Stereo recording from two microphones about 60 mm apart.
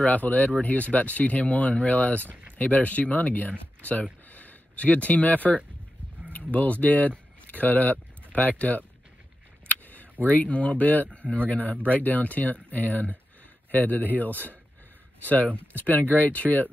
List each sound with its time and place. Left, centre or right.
0.0 s speech: left
9.7 s a sound: left
10.2 s speech: left